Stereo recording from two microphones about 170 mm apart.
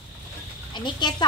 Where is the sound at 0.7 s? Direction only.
25° left (ahead or behind).